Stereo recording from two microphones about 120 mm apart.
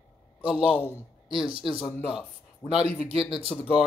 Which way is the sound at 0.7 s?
15° left (ahead or behind).